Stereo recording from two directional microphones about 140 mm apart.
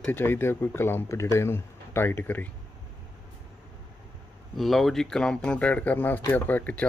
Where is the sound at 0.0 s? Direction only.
15° left (ahead or behind).